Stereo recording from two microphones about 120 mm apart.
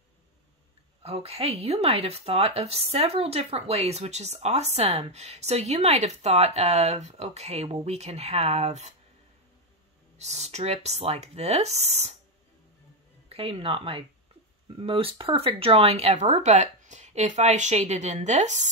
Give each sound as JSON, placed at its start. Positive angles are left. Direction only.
{"t": 1.0, "sound": "speech", "side_deg": -55}
{"t": 10.1, "sound": "speech", "side_deg": -65}
{"t": 13.3, "sound": "speech", "side_deg": -50}